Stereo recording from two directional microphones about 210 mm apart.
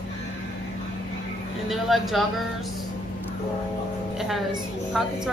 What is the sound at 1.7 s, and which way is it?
Speech, centre (ahead or behind).